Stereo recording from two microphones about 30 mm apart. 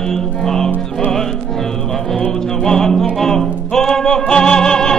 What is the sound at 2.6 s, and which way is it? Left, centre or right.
Music, centre.